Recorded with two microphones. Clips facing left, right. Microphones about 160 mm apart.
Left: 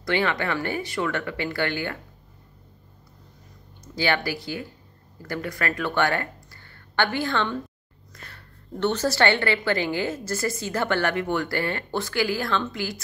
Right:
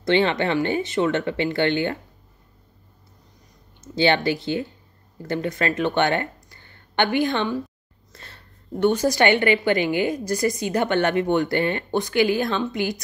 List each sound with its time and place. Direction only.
0.0 s a woman's voice: 25° right (ahead or behind)
3.8 s a woman's voice: 25° right (ahead or behind)
8.1 s a sound: 25° right (ahead or behind)
8.7 s a woman's voice: 10° right (ahead or behind)